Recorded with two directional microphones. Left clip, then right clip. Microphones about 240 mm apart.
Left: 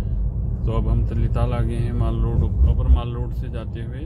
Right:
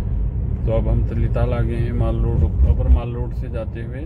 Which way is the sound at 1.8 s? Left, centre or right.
Left.